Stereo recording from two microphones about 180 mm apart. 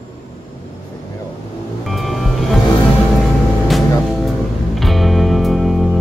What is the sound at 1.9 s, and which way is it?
Music, centre (ahead or behind).